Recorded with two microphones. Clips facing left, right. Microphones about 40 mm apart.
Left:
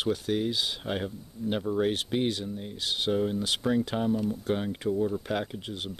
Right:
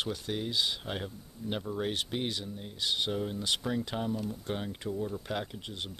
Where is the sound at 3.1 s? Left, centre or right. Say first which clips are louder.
Left 5 dB; centre.